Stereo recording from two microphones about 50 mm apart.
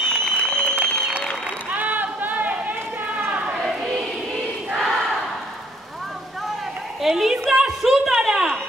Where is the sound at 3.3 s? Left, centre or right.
Right.